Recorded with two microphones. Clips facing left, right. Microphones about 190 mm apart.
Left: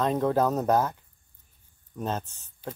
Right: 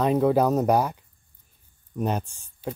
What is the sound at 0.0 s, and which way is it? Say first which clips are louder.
Speech: right 4 dB; 10° right (ahead or behind).